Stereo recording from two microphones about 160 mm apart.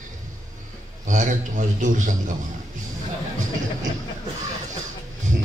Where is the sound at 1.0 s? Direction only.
50° right (ahead or behind).